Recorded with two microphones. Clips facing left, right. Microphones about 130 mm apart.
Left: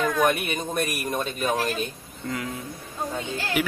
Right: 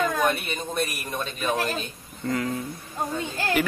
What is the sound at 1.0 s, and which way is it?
Speech, 45° left (ahead or behind).